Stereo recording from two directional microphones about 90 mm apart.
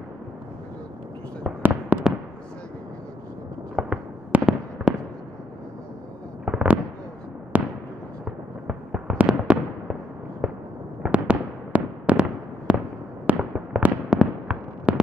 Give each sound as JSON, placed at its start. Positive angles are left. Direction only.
{"t": 1.6, "sound": "fireworks", "side_deg": -15}
{"t": 3.7, "sound": "fireworks", "side_deg": -15}
{"t": 6.4, "sound": "fireworks", "side_deg": -15}